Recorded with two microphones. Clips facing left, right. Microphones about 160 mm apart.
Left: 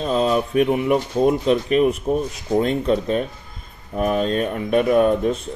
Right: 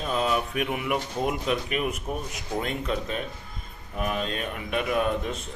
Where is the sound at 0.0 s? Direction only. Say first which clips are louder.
Left 7 dB; 30° left (ahead or behind).